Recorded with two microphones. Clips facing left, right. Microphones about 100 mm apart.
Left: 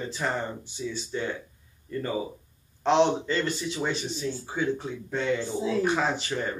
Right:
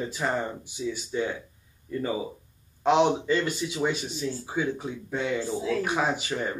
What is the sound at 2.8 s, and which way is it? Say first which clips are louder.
Speech: even; 10° right (ahead or behind).